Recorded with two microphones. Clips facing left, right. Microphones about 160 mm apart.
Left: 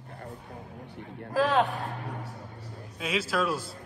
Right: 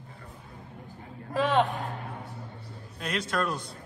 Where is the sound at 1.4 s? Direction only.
Centre (ahead or behind).